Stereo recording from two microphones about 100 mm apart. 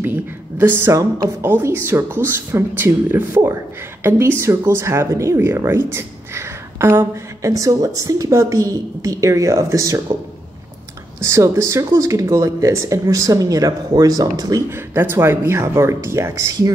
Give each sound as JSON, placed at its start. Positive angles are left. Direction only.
{"t": 0.0, "sound": "speech", "side_deg": -20}
{"t": 7.5, "sound": "speech", "side_deg": -35}
{"t": 11.1, "sound": "speech", "side_deg": -30}
{"t": 14.7, "sound": "speech", "side_deg": -25}